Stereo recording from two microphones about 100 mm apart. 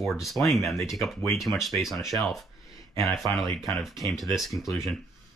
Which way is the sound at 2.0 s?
35° left (ahead or behind).